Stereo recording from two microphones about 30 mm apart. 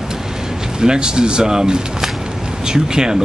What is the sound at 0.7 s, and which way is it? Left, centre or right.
Speech, right.